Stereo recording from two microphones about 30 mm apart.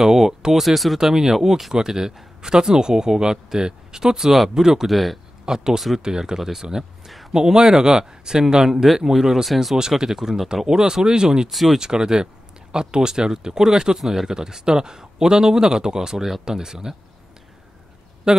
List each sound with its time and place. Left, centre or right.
0.0 s a sound: centre
0.6 s speech: centre
0.9 s speech: centre
4.8 s speech: centre
5.4 s speech: right
8.8 s speech: centre
9.8 s speech: right
11.5 s speech: centre
11.8 s speech: right
18.3 s a man's voice: right